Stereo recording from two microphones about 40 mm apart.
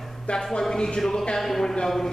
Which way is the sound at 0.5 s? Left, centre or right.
Centre.